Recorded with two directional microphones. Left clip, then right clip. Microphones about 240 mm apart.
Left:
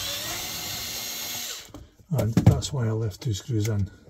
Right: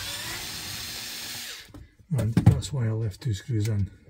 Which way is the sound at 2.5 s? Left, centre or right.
Right.